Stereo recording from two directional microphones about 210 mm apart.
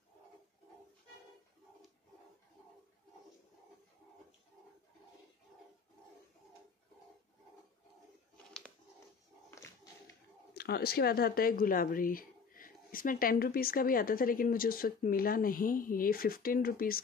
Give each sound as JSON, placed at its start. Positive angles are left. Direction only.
{"t": 10.5, "sound": "speech", "side_deg": 50}